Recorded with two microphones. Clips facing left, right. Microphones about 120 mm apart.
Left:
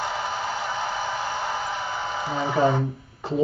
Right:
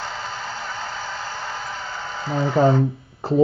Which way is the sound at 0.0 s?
15° left (ahead or behind).